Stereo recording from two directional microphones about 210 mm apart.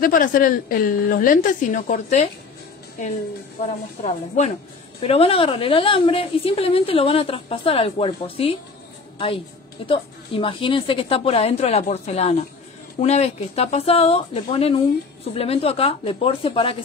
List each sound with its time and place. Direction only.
0.0 s a woman's voice: 40° left (ahead or behind)
3.6 s a woman's voice: 30° left (ahead or behind)
9.8 s a woman's voice: 25° left (ahead or behind)